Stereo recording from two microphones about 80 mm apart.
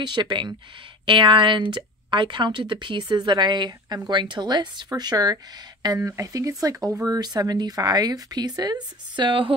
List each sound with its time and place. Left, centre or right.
0.0 s a woman's voice: right
1.0 s a woman's voice: right
5.9 s speech: right
7.2 s speech: right